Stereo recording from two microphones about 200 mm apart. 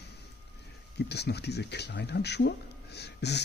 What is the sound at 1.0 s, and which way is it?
Speech, 55° left (ahead or behind).